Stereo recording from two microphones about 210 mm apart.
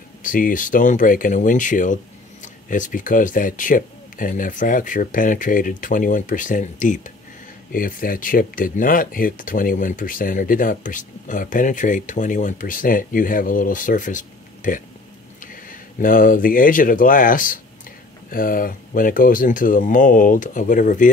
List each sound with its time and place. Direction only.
0.2 s speech: 40° left (ahead or behind)